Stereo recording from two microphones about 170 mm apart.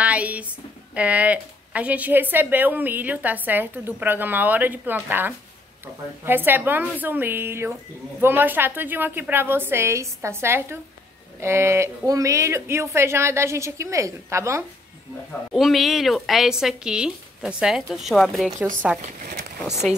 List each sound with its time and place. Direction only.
0.0 s a sound: 10° right (ahead or behind)
0.9 s a woman's voice: 10° right (ahead or behind)
15.5 s speech: centre (ahead or behind)